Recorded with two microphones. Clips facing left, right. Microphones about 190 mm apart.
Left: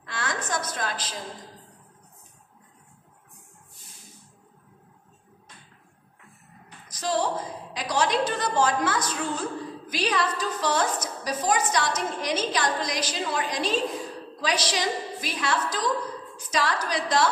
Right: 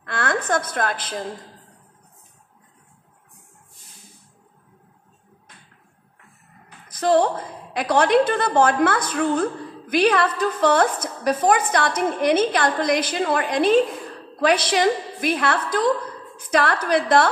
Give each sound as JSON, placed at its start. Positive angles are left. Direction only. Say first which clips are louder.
{"t": 0.0, "sound": "a woman's voice", "louder": "right 7 dB", "side_deg": -55}
{"t": 6.9, "sound": "a woman's voice", "louder": "right 8 dB", "side_deg": -55}